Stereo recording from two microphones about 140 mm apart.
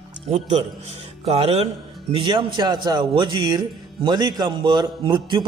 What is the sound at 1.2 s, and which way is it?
A man's voice, 45° right (ahead or behind).